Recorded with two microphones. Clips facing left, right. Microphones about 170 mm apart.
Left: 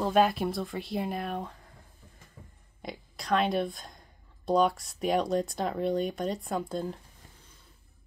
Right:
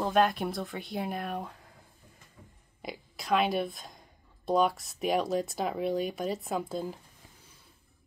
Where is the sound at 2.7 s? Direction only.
5° right (ahead or behind).